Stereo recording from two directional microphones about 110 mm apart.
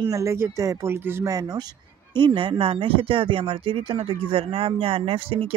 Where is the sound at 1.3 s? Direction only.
35° right (ahead or behind).